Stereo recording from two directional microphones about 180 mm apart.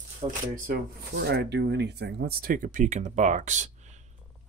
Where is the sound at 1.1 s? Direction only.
60° right (ahead or behind); by 4.0 s 40° right (ahead or behind).